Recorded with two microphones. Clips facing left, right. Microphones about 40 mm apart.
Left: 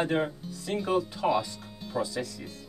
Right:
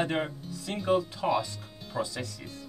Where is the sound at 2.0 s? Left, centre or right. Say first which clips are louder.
Left 2 dB; centre.